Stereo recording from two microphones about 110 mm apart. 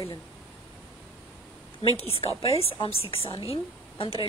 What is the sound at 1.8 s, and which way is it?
A woman's voice, 60° left (ahead or behind).